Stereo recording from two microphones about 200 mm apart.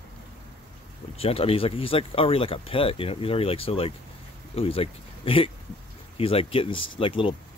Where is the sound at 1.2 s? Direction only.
30° left (ahead or behind).